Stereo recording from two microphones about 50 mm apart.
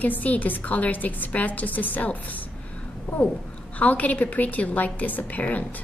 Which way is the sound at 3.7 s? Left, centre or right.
Left.